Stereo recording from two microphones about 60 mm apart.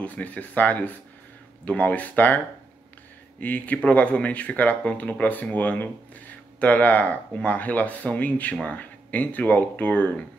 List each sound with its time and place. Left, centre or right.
0.0 s speech: left